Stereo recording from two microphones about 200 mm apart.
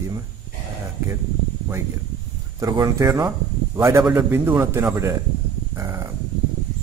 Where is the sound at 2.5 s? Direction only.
15° right (ahead or behind).